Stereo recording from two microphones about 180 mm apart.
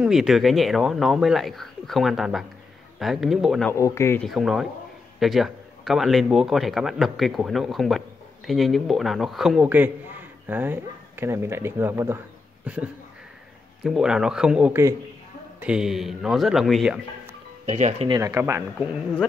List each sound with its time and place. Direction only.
0.0 s speech: centre (ahead or behind)
3.7 s speech: 15° left (ahead or behind)
4.2 s speech: centre (ahead or behind)
17.6 s speech: 40° right (ahead or behind)
18.0 s speech: 20° right (ahead or behind)